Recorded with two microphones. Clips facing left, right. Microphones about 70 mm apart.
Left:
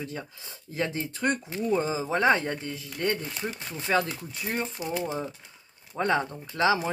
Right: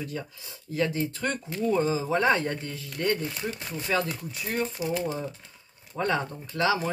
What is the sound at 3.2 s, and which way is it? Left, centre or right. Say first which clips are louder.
Speech: right 2 dB; centre.